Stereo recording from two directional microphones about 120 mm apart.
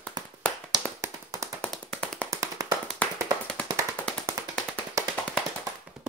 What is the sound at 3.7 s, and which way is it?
Tap, 25° right (ahead or behind).